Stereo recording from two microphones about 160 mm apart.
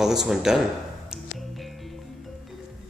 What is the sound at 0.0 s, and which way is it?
Speech, 5° right (ahead or behind).